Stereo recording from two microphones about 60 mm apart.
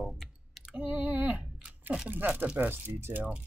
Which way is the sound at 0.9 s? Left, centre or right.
Right.